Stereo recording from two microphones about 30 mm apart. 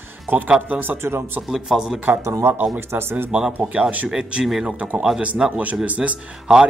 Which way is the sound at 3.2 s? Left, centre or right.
Right.